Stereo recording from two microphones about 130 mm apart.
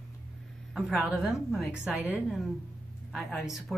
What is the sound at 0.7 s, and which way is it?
A woman's voice, centre (ahead or behind).